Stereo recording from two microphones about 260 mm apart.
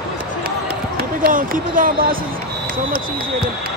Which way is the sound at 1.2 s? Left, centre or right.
Right.